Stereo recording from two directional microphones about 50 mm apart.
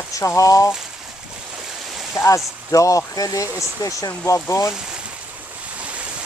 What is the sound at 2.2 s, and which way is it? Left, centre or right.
Speech, left.